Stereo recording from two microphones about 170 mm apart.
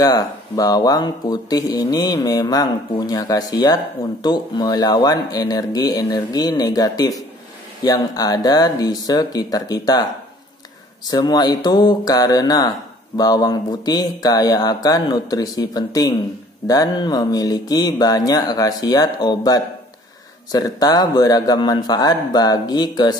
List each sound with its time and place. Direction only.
0.0 s speech: 20° left (ahead or behind)
11.1 s speech: 25° left (ahead or behind)